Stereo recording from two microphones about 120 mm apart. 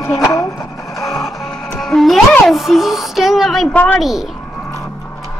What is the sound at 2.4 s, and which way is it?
A woman's voice, centre (ahead or behind).